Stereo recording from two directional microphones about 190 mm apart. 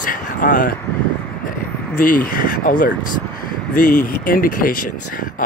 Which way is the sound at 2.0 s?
45° left (ahead or behind).